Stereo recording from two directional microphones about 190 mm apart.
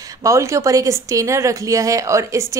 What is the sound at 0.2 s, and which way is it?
Speech, 15° right (ahead or behind).